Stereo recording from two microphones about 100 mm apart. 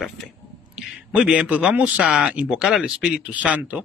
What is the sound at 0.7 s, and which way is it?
A man's voice, 10° right (ahead or behind).